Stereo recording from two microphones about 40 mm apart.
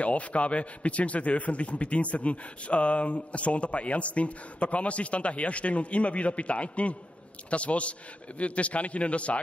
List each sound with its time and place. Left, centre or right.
0.0 s a man's voice: left